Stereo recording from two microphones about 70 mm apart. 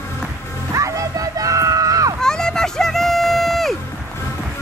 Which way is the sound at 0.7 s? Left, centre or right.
Right.